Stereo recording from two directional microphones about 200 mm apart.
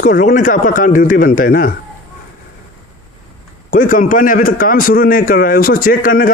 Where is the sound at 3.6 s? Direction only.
40° left (ahead or behind).